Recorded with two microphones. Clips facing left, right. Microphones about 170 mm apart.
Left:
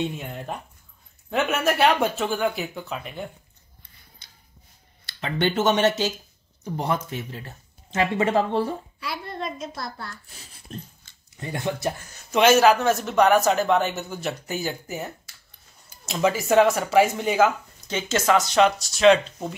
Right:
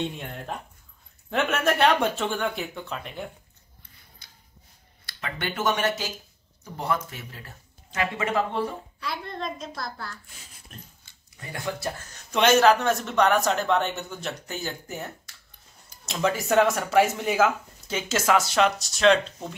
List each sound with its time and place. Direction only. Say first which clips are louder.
0.0 s speech: left 3 dB; 5° left (ahead or behind)
4.2 s a sound: even; 25° left (ahead or behind)
5.0 s speech: left 8 dB; 25° left (ahead or behind)
9.0 s speech: even; 5° left (ahead or behind)
10.7 s speech: left 11 dB; 30° left (ahead or behind)
12.1 s speech: left 3 dB; 5° left (ahead or behind)